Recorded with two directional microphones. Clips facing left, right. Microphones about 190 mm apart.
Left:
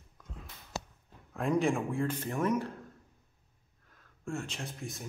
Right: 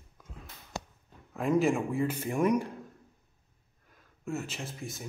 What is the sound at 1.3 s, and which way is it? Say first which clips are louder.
A man's voice: right 3 dB; centre (ahead or behind).